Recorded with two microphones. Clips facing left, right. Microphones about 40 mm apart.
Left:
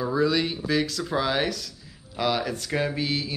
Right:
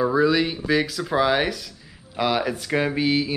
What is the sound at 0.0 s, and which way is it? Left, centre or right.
Speech, centre.